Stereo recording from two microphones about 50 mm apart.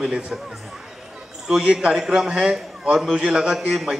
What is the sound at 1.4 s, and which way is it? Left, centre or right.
A man's voice, centre.